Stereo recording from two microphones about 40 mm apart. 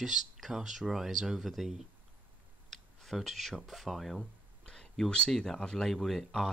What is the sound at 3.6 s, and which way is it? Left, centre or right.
Speech, centre.